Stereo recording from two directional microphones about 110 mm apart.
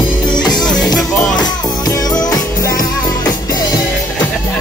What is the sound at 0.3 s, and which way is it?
Music, 40° left (ahead or behind).